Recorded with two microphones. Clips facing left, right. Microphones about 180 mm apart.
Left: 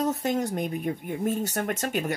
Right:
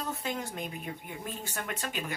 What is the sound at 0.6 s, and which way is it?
Speech, 55° left (ahead or behind).